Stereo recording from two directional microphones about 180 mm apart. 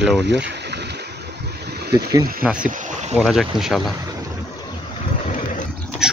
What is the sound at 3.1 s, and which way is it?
Speech, centre (ahead or behind).